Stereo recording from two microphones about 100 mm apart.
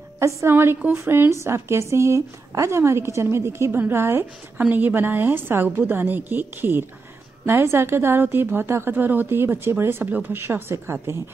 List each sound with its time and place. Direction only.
0.4 s a woman's voice: 25° right (ahead or behind)